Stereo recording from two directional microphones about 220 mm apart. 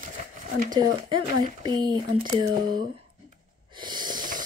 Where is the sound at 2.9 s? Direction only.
25° right (ahead or behind).